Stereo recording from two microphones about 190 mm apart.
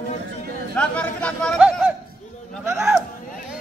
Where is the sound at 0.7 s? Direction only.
5° left (ahead or behind).